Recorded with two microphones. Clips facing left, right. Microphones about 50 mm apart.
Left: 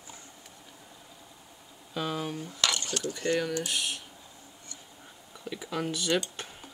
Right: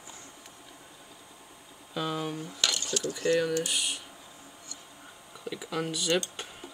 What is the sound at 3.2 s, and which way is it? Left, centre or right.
Speech, left.